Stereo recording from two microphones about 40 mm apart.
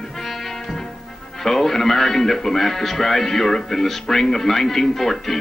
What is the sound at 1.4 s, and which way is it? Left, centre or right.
Speech, centre.